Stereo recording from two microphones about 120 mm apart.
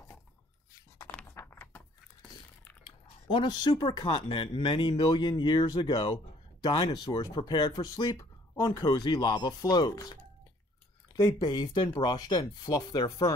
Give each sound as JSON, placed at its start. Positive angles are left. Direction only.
{"t": 1.4, "sound": "a sound", "side_deg": 15}
{"t": 2.8, "sound": "speech", "side_deg": 40}
{"t": 11.1, "sound": "speech", "side_deg": 30}